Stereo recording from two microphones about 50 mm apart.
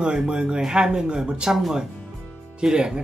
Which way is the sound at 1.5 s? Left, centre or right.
Centre.